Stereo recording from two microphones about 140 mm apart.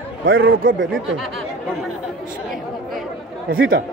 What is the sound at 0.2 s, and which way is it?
Speech, 90° right.